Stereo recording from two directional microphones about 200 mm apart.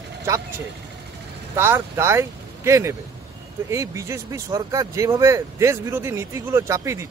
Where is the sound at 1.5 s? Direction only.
10° right (ahead or behind).